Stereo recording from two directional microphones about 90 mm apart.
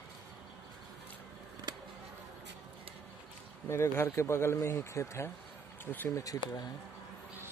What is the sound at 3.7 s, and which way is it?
Speech, 30° left (ahead or behind).